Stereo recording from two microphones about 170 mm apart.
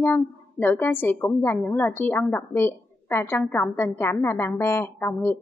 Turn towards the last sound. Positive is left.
turn(degrees=10)  # may be behind; listen again after turning